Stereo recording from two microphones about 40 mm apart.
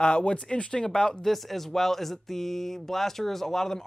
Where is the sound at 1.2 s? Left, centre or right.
Centre.